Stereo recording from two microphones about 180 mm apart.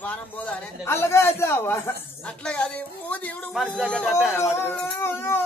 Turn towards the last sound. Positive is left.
turn(degrees=10)  # may be behind; listen again after turning